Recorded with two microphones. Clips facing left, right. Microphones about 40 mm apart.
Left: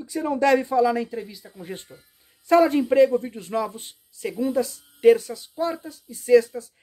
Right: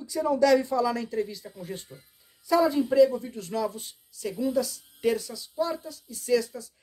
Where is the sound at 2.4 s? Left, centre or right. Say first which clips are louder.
Left 5 dB; left.